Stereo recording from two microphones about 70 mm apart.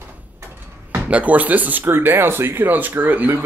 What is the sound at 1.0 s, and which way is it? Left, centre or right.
Speech, centre.